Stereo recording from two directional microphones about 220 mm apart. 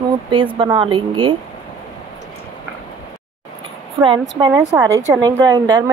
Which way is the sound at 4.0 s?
15° right (ahead or behind).